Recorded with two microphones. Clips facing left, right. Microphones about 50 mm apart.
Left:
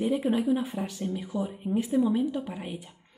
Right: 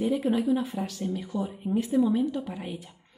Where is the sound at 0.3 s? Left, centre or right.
Centre.